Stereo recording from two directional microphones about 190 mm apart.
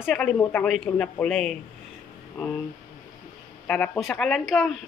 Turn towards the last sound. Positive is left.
turn(degrees=0)  # may be behind; listen again after turning